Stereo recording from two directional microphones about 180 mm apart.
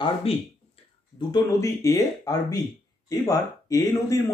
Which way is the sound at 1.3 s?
20° left (ahead or behind).